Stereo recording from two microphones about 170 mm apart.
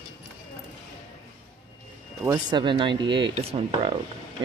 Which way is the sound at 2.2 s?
25° right (ahead or behind).